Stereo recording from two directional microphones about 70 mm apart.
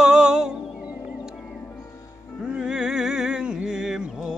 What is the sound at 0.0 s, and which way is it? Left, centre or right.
Music, centre.